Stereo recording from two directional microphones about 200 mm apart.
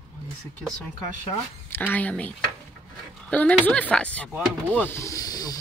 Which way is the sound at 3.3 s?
5° left (ahead or behind).